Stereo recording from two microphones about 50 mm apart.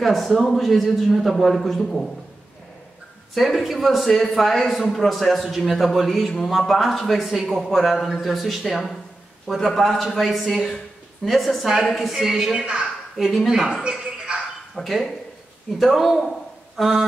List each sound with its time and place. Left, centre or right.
0.0 s a man's voice: centre
3.3 s a man's voice: centre
12.5 s a woman's voice: centre
13.8 s a sound: centre
14.8 s a man's voice: centre